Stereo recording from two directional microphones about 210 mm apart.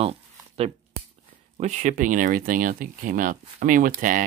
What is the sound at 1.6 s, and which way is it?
Speech, 35° right (ahead or behind).